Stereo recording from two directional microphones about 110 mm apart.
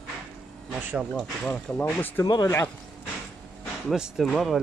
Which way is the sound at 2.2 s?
35° left (ahead or behind).